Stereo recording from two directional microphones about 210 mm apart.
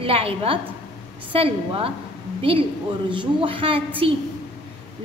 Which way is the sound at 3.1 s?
25° right (ahead or behind).